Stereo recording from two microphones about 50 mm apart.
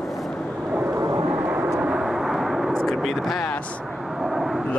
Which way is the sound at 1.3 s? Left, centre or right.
Right.